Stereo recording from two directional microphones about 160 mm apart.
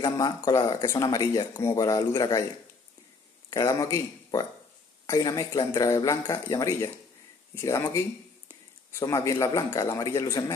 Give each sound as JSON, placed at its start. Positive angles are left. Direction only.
{"t": 0.0, "sound": "speech", "side_deg": 20}
{"t": 3.4, "sound": "speech", "side_deg": 20}
{"t": 9.0, "sound": "speech", "side_deg": 20}